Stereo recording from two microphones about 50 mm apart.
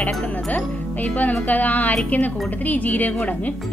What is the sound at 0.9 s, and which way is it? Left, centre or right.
Speech, left.